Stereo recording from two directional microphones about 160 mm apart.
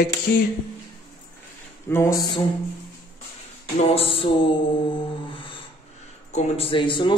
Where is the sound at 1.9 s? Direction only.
15° left (ahead or behind).